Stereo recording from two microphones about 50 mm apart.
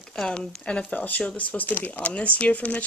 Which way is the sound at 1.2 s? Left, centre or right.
Left.